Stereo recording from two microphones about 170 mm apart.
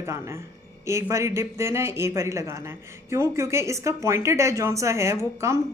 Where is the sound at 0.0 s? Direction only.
15° right (ahead or behind).